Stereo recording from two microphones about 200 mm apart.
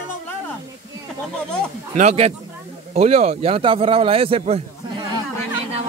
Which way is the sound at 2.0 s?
30° right (ahead or behind).